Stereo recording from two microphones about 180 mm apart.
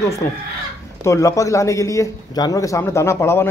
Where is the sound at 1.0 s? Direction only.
15° left (ahead or behind).